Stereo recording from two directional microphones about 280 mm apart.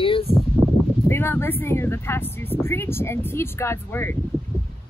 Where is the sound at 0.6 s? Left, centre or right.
Centre.